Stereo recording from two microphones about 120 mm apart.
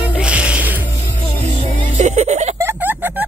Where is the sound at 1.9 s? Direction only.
70° right (ahead or behind).